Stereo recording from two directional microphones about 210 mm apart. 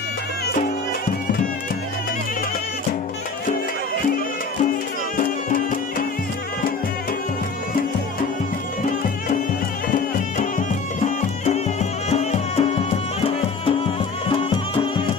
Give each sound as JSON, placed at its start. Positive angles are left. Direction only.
{"t": 5.1, "sound": "music", "side_deg": 40}
{"t": 9.8, "sound": "music", "side_deg": 40}